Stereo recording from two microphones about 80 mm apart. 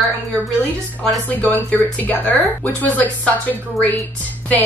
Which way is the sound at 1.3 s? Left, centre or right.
Left.